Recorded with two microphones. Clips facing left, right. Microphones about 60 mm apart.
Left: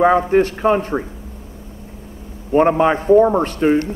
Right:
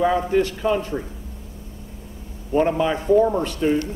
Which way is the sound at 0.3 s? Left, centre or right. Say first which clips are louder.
Left 5 dB; left.